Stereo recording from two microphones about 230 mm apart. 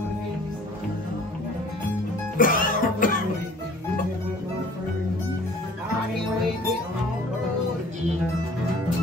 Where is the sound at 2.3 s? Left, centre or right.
Left.